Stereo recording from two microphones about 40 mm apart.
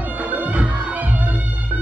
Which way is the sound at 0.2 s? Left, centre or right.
Right.